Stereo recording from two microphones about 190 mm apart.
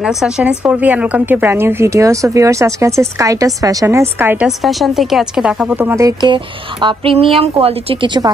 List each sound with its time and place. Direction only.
0.0 s a woman's voice: 5° right (ahead or behind); by 8.3 s 25° right (ahead or behind)